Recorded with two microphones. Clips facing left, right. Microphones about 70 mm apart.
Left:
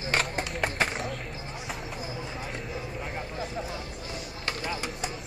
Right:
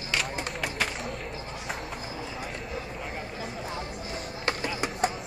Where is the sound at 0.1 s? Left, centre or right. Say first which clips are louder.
Left 2 dB; left.